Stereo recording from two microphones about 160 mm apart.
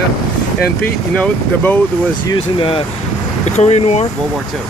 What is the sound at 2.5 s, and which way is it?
Speech, 35° left (ahead or behind).